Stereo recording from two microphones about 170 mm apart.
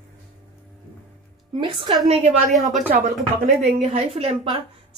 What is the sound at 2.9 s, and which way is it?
Speech, 55° right (ahead or behind).